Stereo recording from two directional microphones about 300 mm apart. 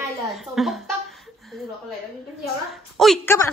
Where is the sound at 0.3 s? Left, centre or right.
Centre.